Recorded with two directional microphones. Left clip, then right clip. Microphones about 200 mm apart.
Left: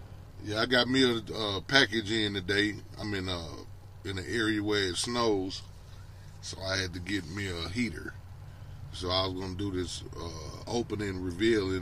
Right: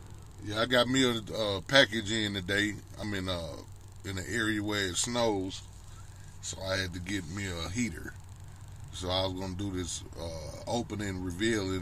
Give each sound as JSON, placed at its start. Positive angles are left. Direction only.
{"t": 0.5, "sound": "speech", "side_deg": -5}
{"t": 6.6, "sound": "speech", "side_deg": -10}